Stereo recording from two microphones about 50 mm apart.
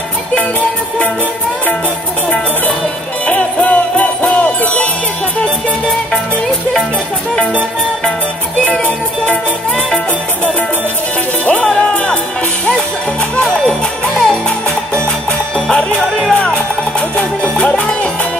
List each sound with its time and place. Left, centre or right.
3.3 s music: left
11.6 s music: centre
13.4 s music: centre
15.5 s music: centre
16.3 s music: left